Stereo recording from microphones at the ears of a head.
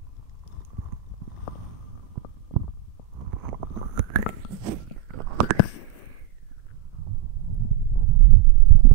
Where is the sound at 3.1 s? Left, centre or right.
Right.